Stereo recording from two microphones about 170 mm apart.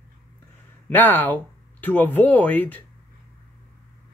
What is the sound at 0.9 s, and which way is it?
Speech, 10° left (ahead or behind).